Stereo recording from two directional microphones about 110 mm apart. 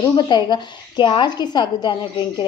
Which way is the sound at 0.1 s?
40° left (ahead or behind).